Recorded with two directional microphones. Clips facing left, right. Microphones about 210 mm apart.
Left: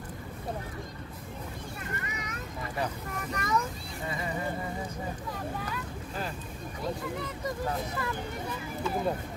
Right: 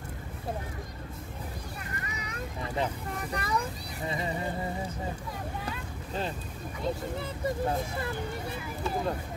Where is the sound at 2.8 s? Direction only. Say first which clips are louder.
Right 1 dB; 30° right (ahead or behind).